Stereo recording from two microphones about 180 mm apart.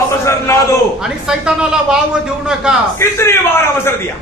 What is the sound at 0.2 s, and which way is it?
Speech, 15° left (ahead or behind).